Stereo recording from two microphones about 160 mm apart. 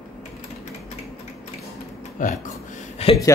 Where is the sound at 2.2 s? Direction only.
55° left (ahead or behind).